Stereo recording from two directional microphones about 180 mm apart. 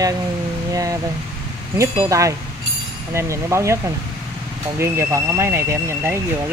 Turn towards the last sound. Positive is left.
turn(degrees=-15)  # may be behind; listen again after turning